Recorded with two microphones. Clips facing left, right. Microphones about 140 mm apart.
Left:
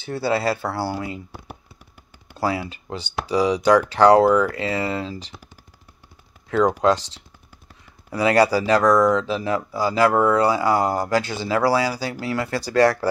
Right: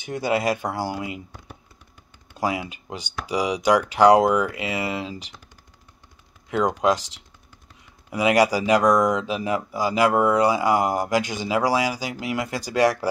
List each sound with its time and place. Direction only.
0.0 s speech: 15° right (ahead or behind)
2.3 s speech: 15° right (ahead or behind)
8.1 s speech: 15° right (ahead or behind)